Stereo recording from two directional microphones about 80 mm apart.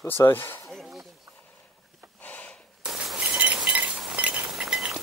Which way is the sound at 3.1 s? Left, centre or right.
Centre.